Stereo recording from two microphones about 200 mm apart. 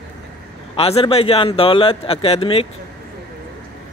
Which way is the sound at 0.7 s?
30° left (ahead or behind).